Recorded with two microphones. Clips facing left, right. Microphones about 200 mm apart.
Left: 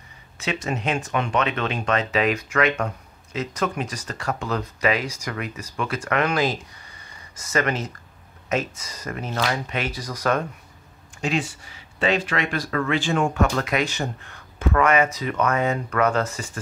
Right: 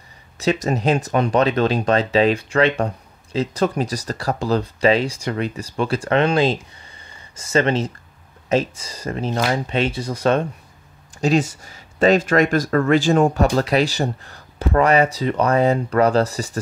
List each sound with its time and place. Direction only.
0.4 s speech: 40° right (ahead or behind)
11.1 s speech: 40° right (ahead or behind)